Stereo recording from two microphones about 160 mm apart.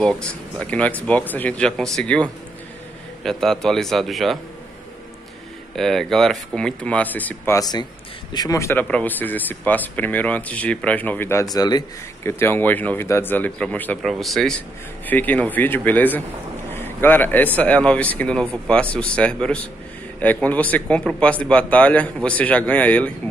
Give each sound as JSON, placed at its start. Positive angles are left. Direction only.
{"t": 0.0, "sound": "a man's voice", "side_deg": 5}
{"t": 5.8, "sound": "a man's voice", "side_deg": 0}